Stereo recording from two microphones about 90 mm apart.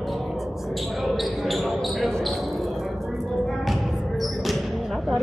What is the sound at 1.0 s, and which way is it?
Basketball bounce, centre (ahead or behind).